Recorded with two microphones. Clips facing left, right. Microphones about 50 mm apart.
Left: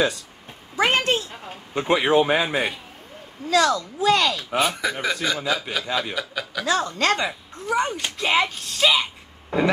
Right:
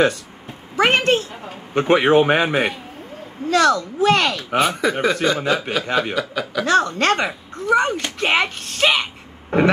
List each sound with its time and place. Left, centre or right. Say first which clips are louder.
0.7 s a sound: right 4 dB; right
1.7 s speech: right 5 dB; right
5.1 s speech: right 6 dB; right
5.4 s speech: right 5 dB; right
6.1 s speech: right 6 dB; centre
6.6 s speech: right 5 dB; right